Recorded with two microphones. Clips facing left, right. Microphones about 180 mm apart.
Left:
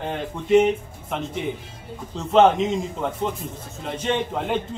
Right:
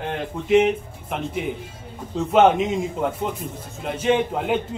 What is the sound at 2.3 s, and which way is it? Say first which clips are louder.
A man's voice: even; 5° right (ahead or behind).